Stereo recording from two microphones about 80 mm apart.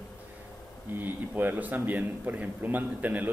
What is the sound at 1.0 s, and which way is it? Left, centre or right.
A man's voice, right.